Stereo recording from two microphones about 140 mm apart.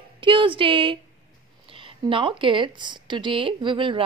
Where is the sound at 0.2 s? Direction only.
35° right (ahead or behind).